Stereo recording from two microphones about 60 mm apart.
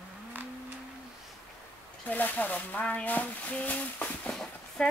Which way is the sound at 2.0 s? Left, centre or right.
Left.